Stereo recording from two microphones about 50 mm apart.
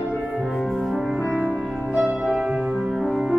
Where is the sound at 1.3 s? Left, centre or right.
Right.